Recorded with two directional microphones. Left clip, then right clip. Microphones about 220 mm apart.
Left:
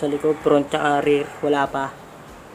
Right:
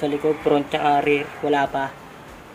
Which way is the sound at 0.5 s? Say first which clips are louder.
Left 1 dB; 15° left (ahead or behind).